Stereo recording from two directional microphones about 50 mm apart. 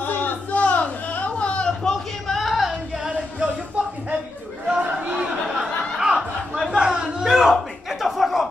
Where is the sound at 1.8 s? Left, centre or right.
Centre.